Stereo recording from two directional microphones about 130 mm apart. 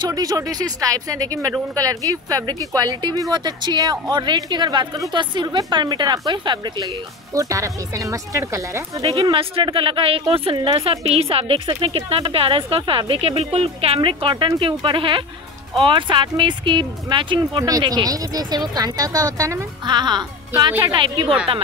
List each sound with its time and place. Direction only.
0.0 s speech: 30° right (ahead or behind)
7.3 s speech: 25° right (ahead or behind)
9.3 s a woman's voice: 40° right (ahead or behind); by 19.6 s 25° right (ahead or behind)
19.9 s speech: 35° right (ahead or behind)